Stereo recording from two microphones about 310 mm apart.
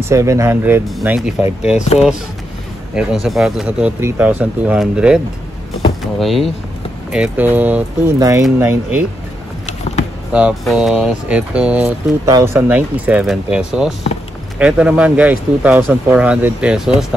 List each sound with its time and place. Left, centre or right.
0.1 s speech: centre
2.9 s speech: centre
9.9 s a sound: centre
10.3 s speech: centre